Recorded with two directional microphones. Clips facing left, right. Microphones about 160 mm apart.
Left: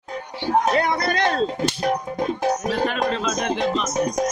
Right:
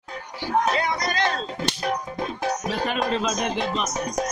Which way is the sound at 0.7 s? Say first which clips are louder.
Left 4 dB; 60° left (ahead or behind).